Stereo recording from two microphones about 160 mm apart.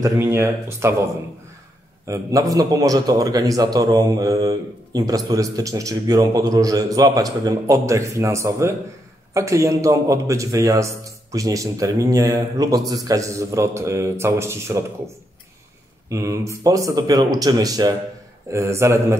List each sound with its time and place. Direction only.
0.0 s speech: 20° right (ahead or behind)
2.0 s a man's voice: 20° right (ahead or behind)
16.1 s a man's voice: 20° right (ahead or behind)